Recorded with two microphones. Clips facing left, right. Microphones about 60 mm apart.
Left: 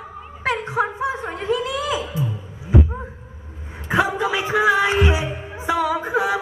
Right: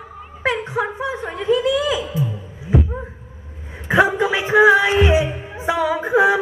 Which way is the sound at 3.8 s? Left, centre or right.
Right.